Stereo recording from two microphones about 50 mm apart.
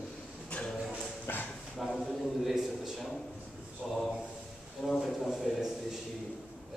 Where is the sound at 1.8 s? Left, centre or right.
Centre.